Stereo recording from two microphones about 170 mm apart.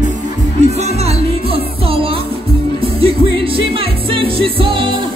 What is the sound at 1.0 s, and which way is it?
Music, 35° right (ahead or behind).